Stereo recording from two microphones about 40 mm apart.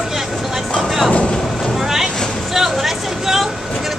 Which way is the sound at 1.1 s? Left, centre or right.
Left.